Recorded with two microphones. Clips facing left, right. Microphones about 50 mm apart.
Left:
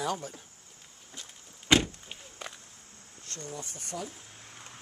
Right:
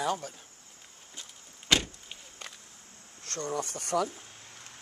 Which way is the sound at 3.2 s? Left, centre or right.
Right.